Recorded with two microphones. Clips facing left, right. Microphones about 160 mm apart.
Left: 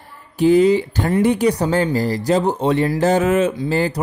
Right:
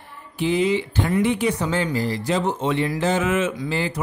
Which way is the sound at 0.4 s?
40° left (ahead or behind).